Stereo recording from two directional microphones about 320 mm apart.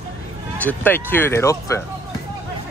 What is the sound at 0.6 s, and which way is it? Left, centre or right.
Speech, centre.